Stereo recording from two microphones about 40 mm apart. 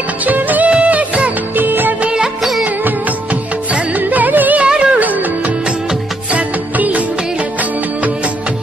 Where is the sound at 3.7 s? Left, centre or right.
Right.